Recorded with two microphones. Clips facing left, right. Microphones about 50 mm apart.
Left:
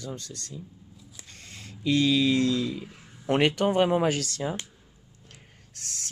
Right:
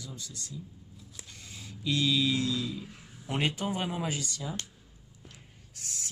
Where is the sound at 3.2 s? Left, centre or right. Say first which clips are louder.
Left 8 dB; left.